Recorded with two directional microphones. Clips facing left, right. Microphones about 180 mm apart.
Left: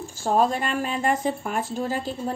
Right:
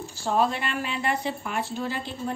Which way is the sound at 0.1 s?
45° left (ahead or behind).